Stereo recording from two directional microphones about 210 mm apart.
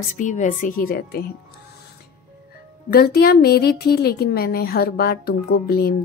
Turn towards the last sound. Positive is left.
turn(degrees=45)  # may be behind; listen again after turning